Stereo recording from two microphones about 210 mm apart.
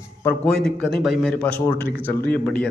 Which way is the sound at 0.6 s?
Centre (ahead or behind).